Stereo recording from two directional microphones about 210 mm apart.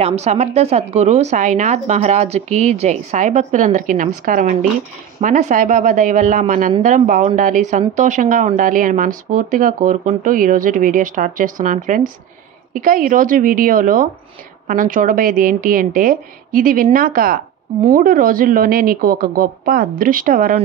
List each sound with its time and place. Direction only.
0.0 s a woman's voice: 30° right (ahead or behind)